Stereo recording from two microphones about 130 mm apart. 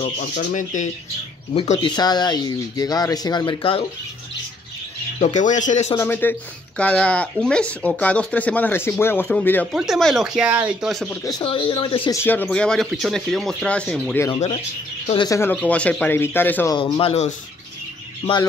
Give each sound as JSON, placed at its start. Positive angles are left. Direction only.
{"t": 0.0, "sound": "speech", "side_deg": 70}
{"t": 1.8, "sound": "speech", "side_deg": 35}
{"t": 5.2, "sound": "speech", "side_deg": 70}
{"t": 5.9, "sound": "speech", "side_deg": 15}
{"t": 9.7, "sound": "speech", "side_deg": 0}
{"t": 11.4, "sound": "speech", "side_deg": 40}
{"t": 12.1, "sound": "speech", "side_deg": 15}
{"t": 12.4, "sound": "speech", "side_deg": 5}
{"t": 15.1, "sound": "speech", "side_deg": 25}
{"t": 15.5, "sound": "speech", "side_deg": 10}
{"t": 16.7, "sound": "speech", "side_deg": 45}